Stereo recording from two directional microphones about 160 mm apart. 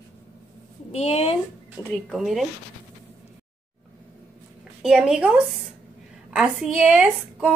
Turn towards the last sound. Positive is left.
turn(degrees=-5)  # may be behind; listen again after turning